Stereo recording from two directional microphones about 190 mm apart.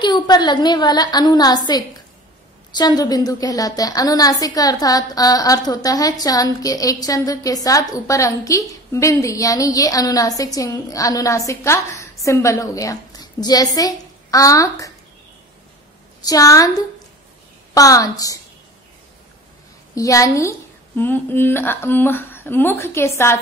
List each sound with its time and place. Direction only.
0.0 s a woman's voice: 20° left (ahead or behind)
2.7 s a woman's voice: 20° left (ahead or behind)
16.3 s a woman's voice: 20° left (ahead or behind)
20.0 s a woman's voice: 15° left (ahead or behind)